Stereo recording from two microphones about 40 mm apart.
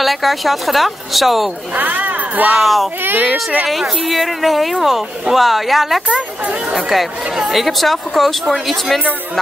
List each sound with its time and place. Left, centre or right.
0.0 s a woman's voice: centre
1.8 s speech: right
2.6 s a woman's voice: centre
3.0 s speech: right
3.6 s a woman's voice: centre